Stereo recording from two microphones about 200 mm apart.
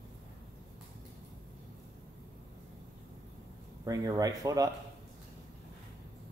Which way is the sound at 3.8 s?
15° right (ahead or behind).